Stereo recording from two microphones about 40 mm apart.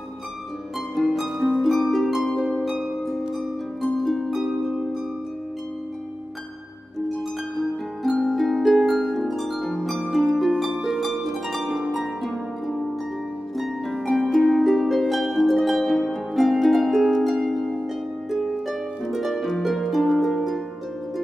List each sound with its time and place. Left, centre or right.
1.0 s harp: centre
2.6 s harp: centre
3.8 s harp: centre
7.5 s harp: centre
14.1 s harp: centre